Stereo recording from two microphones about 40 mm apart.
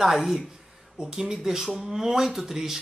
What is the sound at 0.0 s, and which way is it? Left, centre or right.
Speech, centre.